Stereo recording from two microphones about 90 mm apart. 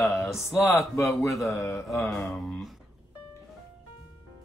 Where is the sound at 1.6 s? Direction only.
35° left (ahead or behind).